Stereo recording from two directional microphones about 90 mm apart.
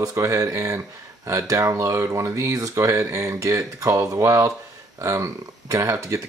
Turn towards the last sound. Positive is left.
turn(degrees=-35)  # may be behind; listen again after turning